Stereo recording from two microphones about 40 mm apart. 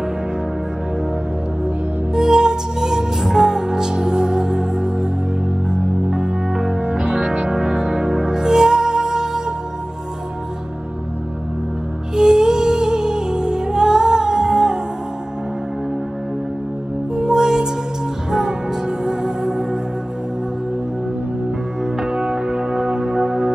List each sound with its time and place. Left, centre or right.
2.1 s music: centre
12.2 s music: centre
17.1 s music: centre
21.9 s music: centre